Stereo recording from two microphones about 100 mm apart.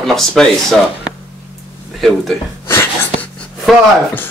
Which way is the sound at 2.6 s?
25° left (ahead or behind).